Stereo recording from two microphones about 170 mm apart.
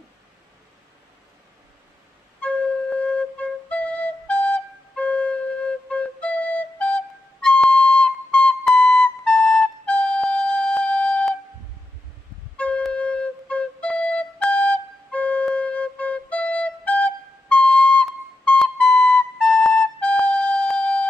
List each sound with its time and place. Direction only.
2.4 s flute: 5° left (ahead or behind)
12.5 s flute: 5° left (ahead or behind)